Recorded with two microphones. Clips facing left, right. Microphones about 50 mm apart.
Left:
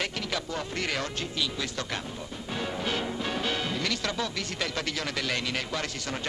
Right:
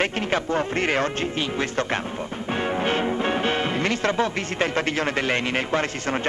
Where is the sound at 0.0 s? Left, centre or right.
Right.